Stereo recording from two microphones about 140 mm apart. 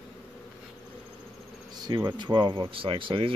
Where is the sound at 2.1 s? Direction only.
35° right (ahead or behind).